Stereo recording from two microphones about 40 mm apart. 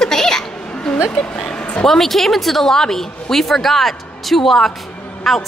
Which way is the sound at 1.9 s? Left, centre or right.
Centre.